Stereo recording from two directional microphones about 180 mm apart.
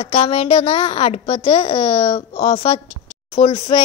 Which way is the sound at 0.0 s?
35° left (ahead or behind).